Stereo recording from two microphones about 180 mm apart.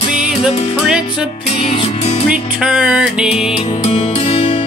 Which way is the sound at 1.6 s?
35° left (ahead or behind).